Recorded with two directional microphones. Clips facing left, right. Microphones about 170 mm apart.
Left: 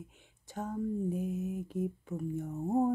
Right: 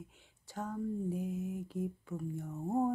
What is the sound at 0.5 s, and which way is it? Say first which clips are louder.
Mantra: left 3 dB; 20° left (ahead or behind).